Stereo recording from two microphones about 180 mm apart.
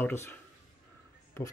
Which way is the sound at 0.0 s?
10° left (ahead or behind).